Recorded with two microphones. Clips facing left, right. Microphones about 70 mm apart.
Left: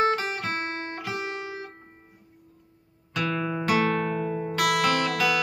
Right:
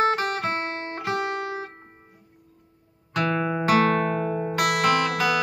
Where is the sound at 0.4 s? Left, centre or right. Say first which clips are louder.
Right 3 dB; right.